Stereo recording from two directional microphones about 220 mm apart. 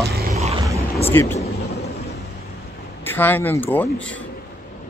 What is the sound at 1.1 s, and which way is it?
Speech, 10° left (ahead or behind).